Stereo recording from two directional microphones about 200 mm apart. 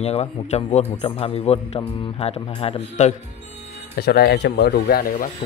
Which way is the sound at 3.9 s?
55° left (ahead or behind).